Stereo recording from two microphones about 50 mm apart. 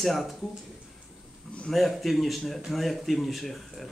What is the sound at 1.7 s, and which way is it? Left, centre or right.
Speech, centre.